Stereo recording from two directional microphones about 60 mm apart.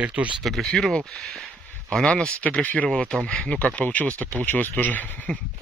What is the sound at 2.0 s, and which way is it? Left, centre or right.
Speech, centre.